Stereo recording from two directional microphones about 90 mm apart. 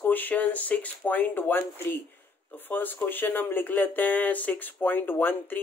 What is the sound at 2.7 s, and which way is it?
Speech, 20° left (ahead or behind).